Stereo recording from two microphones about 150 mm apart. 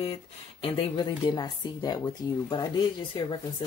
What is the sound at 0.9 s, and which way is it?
Speech, 25° left (ahead or behind).